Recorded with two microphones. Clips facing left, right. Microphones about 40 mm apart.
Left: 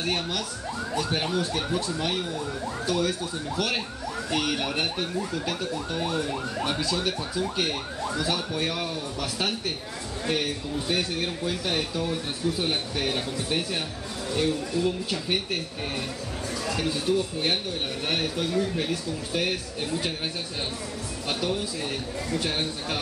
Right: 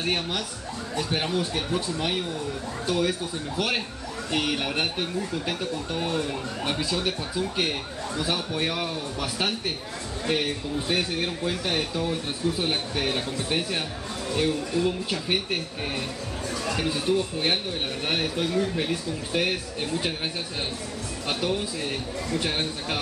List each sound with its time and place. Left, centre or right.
0.0 s a man's voice: centre
17.0 s a man's voice: centre
21.3 s a man's voice: centre